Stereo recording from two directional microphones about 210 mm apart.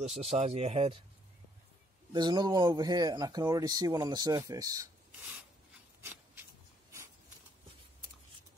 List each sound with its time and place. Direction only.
0.0 s speech: 30° right (ahead or behind)
2.1 s speech: 20° right (ahead or behind)
5.9 s a sound: 10° right (ahead or behind)